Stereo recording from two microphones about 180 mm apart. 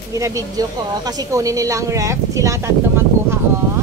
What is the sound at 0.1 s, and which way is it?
Speech, 15° right (ahead or behind).